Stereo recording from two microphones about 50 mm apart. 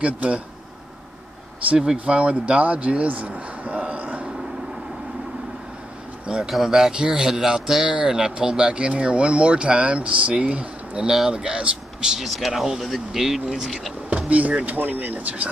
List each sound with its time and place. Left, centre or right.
0.0 s speech: right
1.8 s speech: centre; by 4.3 s right
6.2 s speech: centre
6.9 s speech: centre
11.1 s speech: centre
12.3 s speech: centre
14.1 s speech: right